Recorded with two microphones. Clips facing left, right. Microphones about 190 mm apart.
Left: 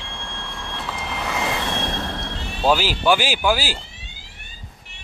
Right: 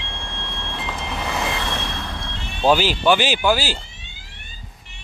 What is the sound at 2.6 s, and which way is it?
Speech, 5° left (ahead or behind).